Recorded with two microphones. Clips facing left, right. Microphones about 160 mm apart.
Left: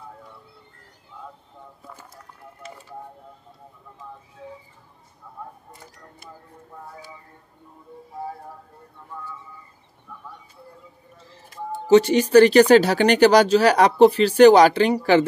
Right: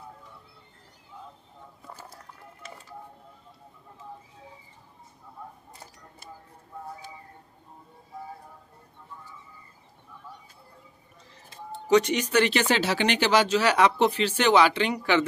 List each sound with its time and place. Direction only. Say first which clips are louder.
11.9 s speech: left 8 dB; 35° left (ahead or behind)